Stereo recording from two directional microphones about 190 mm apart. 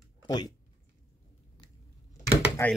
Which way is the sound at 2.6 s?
15° left (ahead or behind).